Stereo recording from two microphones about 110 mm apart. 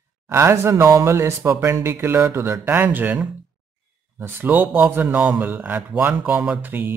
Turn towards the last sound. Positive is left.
turn(degrees=-20)  # may be behind; listen again after turning